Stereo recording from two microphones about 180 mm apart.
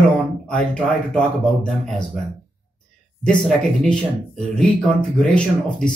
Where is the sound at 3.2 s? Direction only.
5° left (ahead or behind).